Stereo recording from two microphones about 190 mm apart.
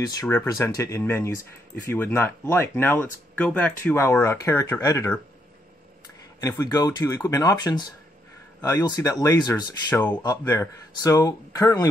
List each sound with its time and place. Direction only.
0.0 s speech: 15° left (ahead or behind)
6.4 s speech: 20° left (ahead or behind)
9.8 s speech: 10° left (ahead or behind)